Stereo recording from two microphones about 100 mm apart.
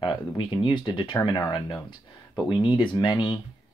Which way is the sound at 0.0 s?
55° left (ahead or behind).